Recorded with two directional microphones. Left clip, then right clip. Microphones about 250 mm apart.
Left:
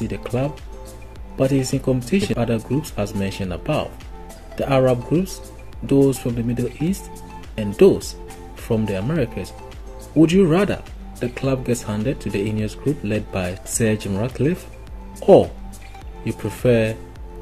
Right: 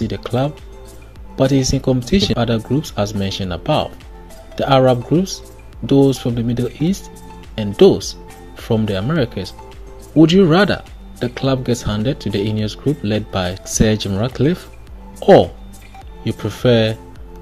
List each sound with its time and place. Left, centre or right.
0.1 s speech: centre